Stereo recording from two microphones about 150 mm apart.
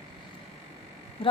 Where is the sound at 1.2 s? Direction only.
35° left (ahead or behind).